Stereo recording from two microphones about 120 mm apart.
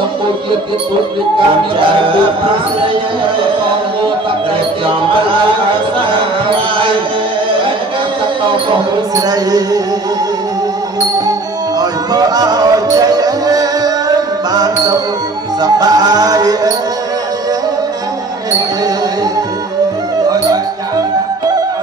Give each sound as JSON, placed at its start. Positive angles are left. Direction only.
{"t": 9.3, "sound": "music", "side_deg": -30}
{"t": 11.8, "sound": "music", "side_deg": -35}